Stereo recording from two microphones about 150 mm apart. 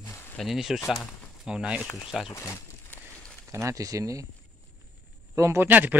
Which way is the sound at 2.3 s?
15° left (ahead or behind).